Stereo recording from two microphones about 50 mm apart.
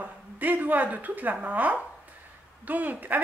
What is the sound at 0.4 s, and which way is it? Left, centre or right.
Speech, right.